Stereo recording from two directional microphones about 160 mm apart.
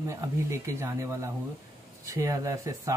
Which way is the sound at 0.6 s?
15° right (ahead or behind).